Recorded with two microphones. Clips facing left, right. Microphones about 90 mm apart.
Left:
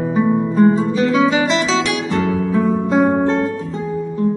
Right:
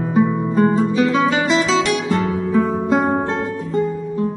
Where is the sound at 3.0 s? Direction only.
5° right (ahead or behind).